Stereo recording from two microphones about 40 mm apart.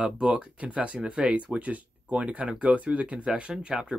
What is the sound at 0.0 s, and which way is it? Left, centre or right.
Speech, right.